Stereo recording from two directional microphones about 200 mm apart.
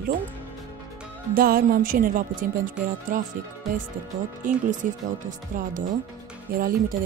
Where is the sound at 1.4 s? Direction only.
45° right (ahead or behind).